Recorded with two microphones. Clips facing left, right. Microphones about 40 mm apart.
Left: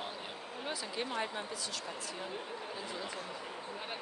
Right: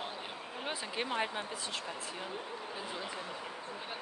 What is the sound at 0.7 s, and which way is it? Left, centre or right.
Speech, right.